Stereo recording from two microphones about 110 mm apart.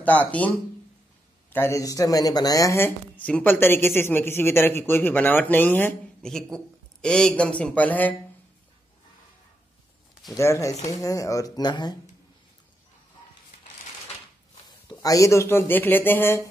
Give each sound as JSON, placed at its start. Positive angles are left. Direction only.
{"t": 0.0, "sound": "a man's voice", "side_deg": 15}
{"t": 1.5, "sound": "speech", "side_deg": 25}
{"t": 6.2, "sound": "a man's voice", "side_deg": 5}
{"t": 10.3, "sound": "speech", "side_deg": 25}
{"t": 14.9, "sound": "speech", "side_deg": 30}